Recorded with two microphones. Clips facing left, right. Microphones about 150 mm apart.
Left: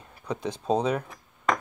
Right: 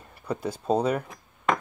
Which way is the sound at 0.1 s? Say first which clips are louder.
Right 1 dB; 5° right (ahead or behind).